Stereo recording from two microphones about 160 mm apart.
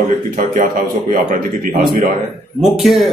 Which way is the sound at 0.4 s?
60° right (ahead or behind).